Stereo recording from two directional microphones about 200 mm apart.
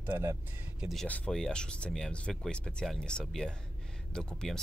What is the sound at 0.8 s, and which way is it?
Speech, centre (ahead or behind).